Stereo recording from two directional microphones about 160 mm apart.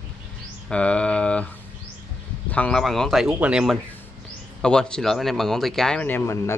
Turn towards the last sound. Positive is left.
turn(degrees=15)  # may be behind; listen again after turning